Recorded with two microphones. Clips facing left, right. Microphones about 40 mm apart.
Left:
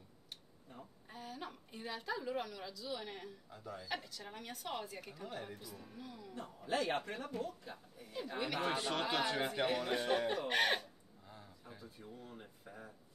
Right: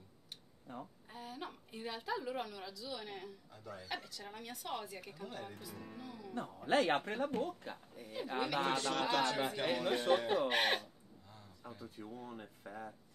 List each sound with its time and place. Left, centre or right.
1.1 s a woman's voice: centre
6.3 s a man's voice: right
8.7 s speech: centre
9.4 s a woman's voice: centre
10.8 s a sound: centre
12.0 s speech: right